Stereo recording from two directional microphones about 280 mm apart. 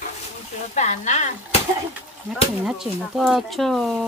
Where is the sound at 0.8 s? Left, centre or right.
Left.